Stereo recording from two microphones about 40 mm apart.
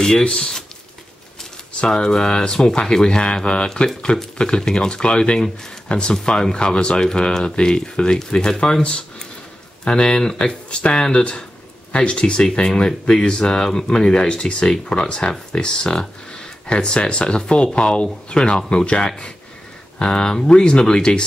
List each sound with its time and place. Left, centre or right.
0.0 s speech: centre
1.9 s speech: centre
9.8 s speech: centre
16.0 s a sound: centre
16.6 s speech: left